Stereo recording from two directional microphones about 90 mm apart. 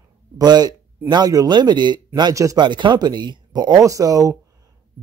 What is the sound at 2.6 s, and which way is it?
Speech, 60° right (ahead or behind).